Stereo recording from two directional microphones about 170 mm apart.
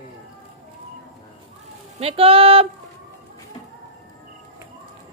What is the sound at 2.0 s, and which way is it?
Speech, 35° right (ahead or behind).